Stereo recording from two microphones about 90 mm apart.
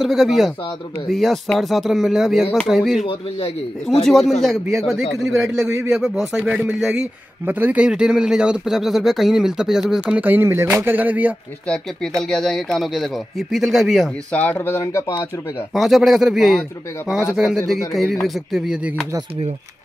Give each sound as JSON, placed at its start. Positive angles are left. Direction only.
{"t": 0.0, "sound": "a man's voice", "side_deg": -5}
{"t": 7.4, "sound": "speech", "side_deg": -20}
{"t": 11.6, "sound": "a man's voice", "side_deg": 10}
{"t": 14.3, "sound": "speech", "side_deg": 15}
{"t": 15.7, "sound": "a man's voice", "side_deg": 0}
{"t": 17.6, "sound": "a man's voice", "side_deg": 0}